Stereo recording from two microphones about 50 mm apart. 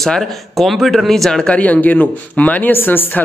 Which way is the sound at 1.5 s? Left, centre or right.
Left.